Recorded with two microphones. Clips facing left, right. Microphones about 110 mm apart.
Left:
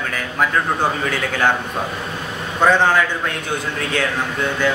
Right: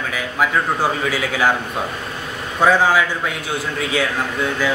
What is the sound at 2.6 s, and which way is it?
A man's voice, 5° right (ahead or behind).